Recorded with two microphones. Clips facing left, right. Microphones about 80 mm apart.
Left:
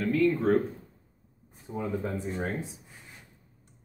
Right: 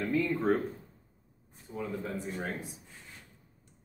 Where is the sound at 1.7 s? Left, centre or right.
Left.